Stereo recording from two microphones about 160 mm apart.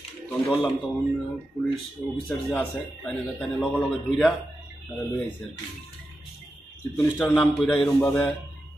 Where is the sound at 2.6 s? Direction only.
5° left (ahead or behind).